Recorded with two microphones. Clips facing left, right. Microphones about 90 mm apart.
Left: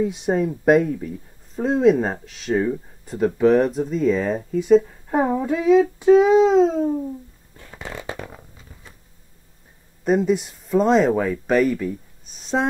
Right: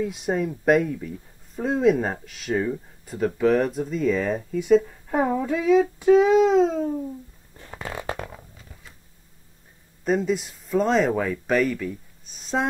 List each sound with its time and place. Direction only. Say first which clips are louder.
0.3 s speech: left 4 dB; 15° left (ahead or behind)
0.7 s speech: left 3 dB; centre (ahead or behind)
2.5 s speech: left 4 dB; 10° left (ahead or behind)
6.2 s speech: left 3 dB; centre (ahead or behind)
6.8 s speech: left 4 dB; 15° left (ahead or behind)
10.0 s speech: left 4 dB; 5° left (ahead or behind)